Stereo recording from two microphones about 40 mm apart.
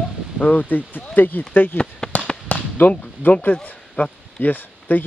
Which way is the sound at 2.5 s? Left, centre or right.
Left.